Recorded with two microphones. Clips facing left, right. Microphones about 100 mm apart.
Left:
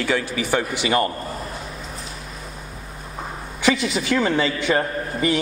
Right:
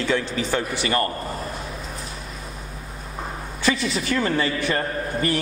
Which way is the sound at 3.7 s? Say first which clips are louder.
Left 2 dB; 15° left (ahead or behind).